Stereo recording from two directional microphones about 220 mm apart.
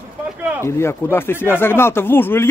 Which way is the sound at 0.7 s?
10° left (ahead or behind).